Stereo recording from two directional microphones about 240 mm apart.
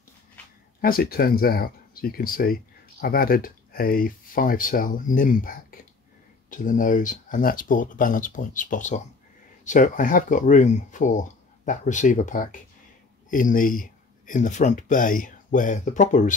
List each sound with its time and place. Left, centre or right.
0.7 s speech: left